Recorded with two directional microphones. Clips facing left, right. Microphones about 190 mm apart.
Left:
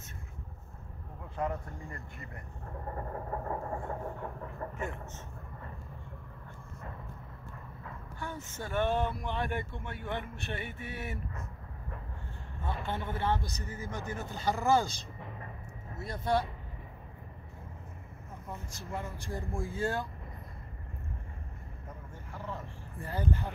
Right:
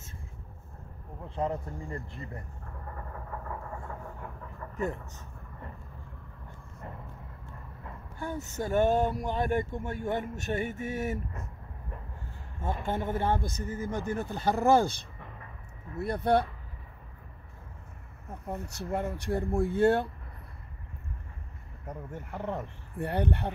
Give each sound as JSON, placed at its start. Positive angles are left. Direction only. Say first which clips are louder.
{"t": 1.2, "sound": "speech", "louder": "right 3 dB", "side_deg": -30}
{"t": 2.9, "sound": "vehicle", "louder": "left 4 dB", "side_deg": 35}
{"t": 4.7, "sound": "speech", "louder": "right 5 dB", "side_deg": -40}
{"t": 8.2, "sound": "speech", "louder": "right 7 dB", "side_deg": -40}
{"t": 12.8, "sound": "speech", "louder": "right 4 dB", "side_deg": -45}
{"t": 18.5, "sound": "speech", "louder": "right 7 dB", "side_deg": -65}
{"t": 21.8, "sound": "speech", "louder": "right 10 dB", "side_deg": -65}